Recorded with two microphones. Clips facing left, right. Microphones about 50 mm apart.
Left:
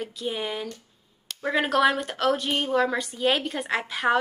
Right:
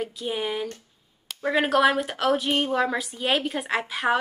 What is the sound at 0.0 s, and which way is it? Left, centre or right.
Speech, centre.